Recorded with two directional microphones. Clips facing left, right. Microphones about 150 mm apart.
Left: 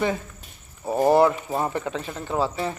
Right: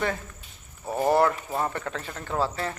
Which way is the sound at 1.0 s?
20° left (ahead or behind).